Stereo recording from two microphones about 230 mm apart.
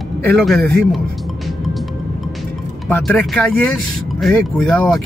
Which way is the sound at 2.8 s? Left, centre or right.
Centre.